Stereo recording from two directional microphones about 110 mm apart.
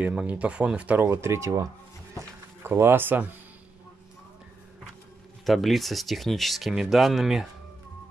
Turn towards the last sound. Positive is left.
turn(degrees=-5)  # may be behind; listen again after turning